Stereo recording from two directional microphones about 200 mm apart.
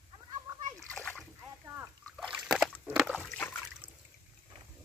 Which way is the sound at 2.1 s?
Centre (ahead or behind).